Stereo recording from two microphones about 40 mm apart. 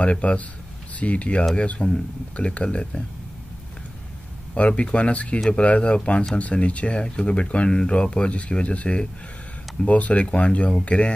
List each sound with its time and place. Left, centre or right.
0.0 s speech: left
4.6 s speech: left